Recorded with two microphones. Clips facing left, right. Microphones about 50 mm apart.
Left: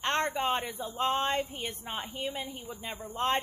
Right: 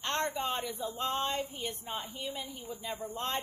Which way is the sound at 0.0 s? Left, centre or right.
Left.